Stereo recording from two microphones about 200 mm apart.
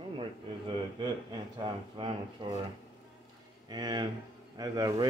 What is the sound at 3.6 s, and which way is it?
Speech, 20° right (ahead or behind).